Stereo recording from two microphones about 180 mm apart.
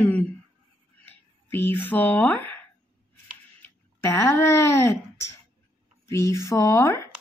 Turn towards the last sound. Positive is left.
turn(degrees=15)  # may be behind; listen again after turning